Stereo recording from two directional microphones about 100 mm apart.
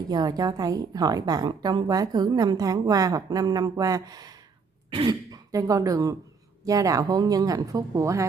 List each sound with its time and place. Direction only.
0.1 s a woman's voice: 40° right (ahead or behind)
5.3 s a woman's voice: 35° right (ahead or behind)